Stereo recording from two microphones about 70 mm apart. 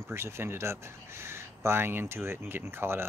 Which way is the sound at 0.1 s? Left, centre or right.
Right.